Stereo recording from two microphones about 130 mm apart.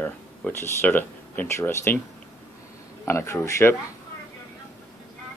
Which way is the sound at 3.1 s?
20° left (ahead or behind).